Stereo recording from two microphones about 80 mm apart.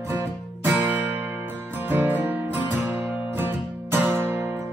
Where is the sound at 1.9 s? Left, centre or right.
Right.